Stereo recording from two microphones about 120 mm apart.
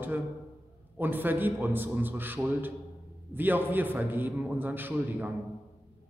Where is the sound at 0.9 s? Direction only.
15° right (ahead or behind).